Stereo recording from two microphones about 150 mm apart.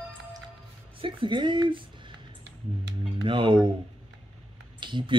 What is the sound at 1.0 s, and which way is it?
Speech, 30° right (ahead or behind).